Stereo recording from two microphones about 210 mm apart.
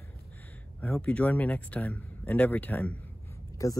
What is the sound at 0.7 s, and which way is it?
Speech, 5° left (ahead or behind).